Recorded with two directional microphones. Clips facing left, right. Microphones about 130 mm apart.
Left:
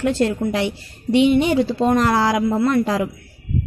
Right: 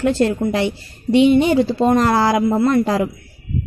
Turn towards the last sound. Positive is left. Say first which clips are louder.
# right 2 dB
turn(degrees=-40)  # may be behind; listen again after turning